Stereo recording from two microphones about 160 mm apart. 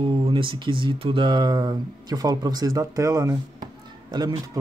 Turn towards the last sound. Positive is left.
turn(degrees=-25)  # may be behind; listen again after turning